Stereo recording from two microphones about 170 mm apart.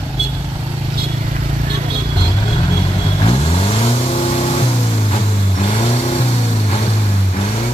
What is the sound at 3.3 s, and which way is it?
Vehicle, 35° left (ahead or behind).